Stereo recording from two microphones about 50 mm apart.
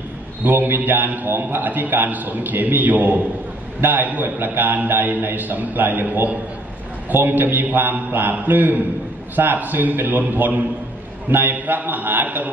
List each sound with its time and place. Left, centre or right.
0.4 s a man's voice: right